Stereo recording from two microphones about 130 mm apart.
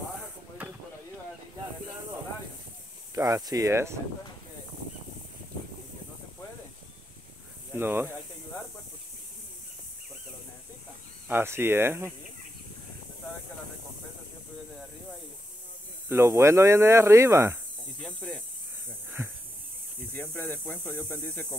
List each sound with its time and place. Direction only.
3.2 s speech: 30° right (ahead or behind)
7.7 s speech: 15° right (ahead or behind)
11.2 s speech: 15° right (ahead or behind)
16.1 s speech: 20° right (ahead or behind)
18.0 s speech: 5° left (ahead or behind)
20.2 s speech: 15° left (ahead or behind)